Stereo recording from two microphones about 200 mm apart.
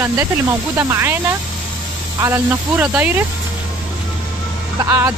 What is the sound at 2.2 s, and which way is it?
Speech, 10° right (ahead or behind).